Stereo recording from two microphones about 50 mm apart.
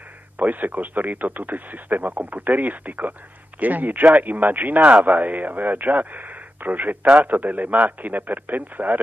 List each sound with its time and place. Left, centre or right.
0.4 s speech: right